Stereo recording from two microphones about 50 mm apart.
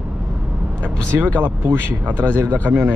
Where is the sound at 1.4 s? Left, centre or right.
Right.